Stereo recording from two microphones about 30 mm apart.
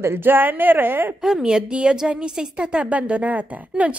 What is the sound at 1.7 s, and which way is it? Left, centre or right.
Speech, right.